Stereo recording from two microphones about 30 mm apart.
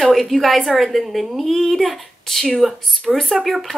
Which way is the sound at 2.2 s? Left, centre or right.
Centre.